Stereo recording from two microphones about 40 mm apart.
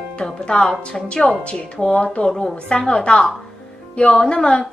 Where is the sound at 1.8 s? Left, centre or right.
Left.